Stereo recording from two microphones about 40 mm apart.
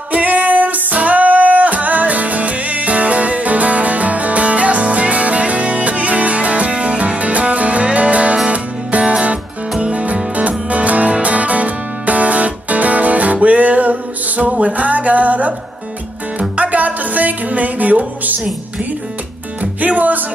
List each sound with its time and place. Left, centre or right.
0.1 s music: right
19.6 s music: right